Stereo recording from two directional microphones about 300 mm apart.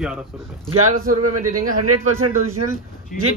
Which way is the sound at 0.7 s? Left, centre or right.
Right.